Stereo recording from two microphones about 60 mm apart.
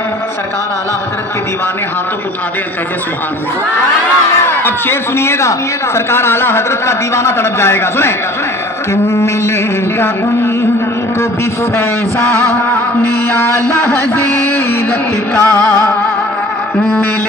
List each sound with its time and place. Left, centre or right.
4.5 s a man's voice: left
9.9 s a sound: left
12.5 s a man's voice: left
15.3 s music: left